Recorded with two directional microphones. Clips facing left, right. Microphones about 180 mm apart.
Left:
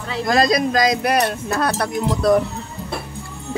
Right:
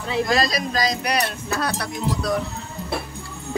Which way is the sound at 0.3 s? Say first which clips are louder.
Left 10 dB; 50° left (ahead or behind).